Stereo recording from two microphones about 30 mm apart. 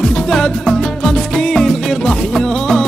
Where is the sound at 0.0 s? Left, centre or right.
Centre.